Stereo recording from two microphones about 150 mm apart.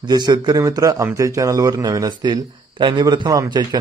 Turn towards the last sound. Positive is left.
turn(degrees=-30)  # may be behind; listen again after turning